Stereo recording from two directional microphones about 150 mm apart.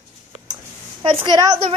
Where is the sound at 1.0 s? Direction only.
35° right (ahead or behind).